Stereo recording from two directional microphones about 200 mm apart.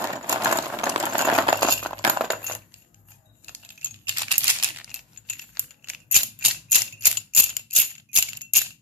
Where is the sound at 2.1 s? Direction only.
5° right (ahead or behind).